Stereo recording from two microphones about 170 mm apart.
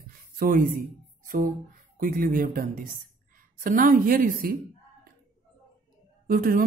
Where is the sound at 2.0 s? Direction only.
55° right (ahead or behind).